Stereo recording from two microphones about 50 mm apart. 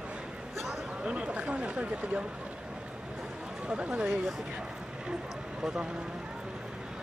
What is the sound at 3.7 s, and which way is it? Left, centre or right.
Speech, right.